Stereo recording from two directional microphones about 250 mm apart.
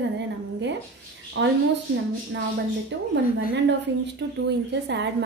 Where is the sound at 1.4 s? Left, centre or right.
Right.